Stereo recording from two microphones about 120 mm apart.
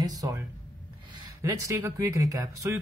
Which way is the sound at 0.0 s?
30° right (ahead or behind).